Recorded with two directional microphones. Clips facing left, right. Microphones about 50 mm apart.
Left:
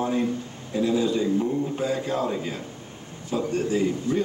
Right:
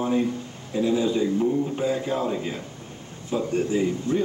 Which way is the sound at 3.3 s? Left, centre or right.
Centre.